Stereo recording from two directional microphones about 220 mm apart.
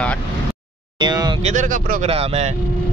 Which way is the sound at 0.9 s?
20° right (ahead or behind).